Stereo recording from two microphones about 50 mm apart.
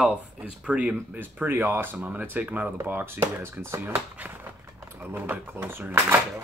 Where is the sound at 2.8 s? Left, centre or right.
Right.